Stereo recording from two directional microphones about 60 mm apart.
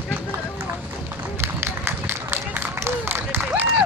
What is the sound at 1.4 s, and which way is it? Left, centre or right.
Run, right.